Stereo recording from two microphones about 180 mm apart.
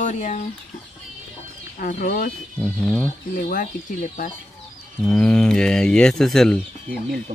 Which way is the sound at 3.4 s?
50° left (ahead or behind).